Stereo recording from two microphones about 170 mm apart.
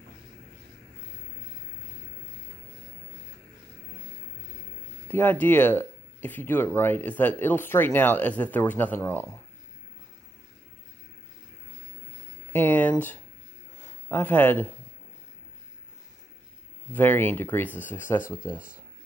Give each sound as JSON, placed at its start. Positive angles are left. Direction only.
{"t": 5.0, "sound": "speech", "side_deg": 10}
{"t": 12.5, "sound": "speech", "side_deg": 10}
{"t": 16.9, "sound": "speech", "side_deg": 10}